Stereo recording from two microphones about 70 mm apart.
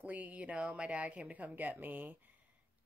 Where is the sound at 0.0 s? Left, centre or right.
Right.